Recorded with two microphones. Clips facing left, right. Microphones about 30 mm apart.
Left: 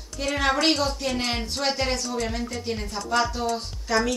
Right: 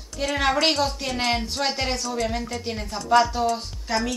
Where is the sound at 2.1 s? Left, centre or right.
Centre.